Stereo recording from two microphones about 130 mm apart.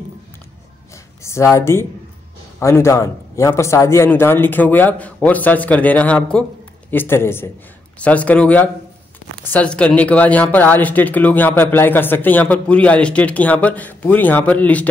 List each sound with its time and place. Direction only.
1.2 s speech: 20° left (ahead or behind)